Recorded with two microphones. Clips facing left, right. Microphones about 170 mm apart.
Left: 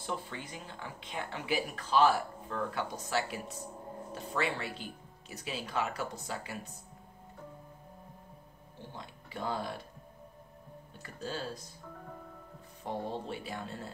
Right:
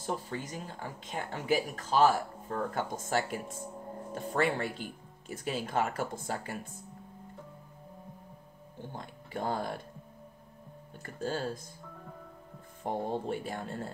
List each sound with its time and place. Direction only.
0.0 s speech: 40° right (ahead or behind)
8.9 s speech: 50° right (ahead or behind)
11.0 s speech: 50° right (ahead or behind)
12.8 s speech: 50° right (ahead or behind)